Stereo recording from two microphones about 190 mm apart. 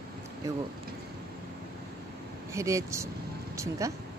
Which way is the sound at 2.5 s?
15° right (ahead or behind).